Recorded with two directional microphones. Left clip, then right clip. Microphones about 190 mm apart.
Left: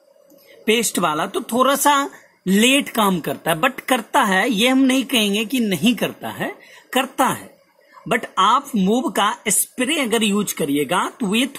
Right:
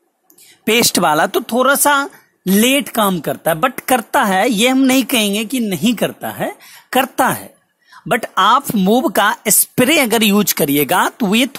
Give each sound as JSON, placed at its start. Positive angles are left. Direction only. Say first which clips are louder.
{"t": 0.7, "sound": "speech", "louder": "right 5 dB", "side_deg": -45}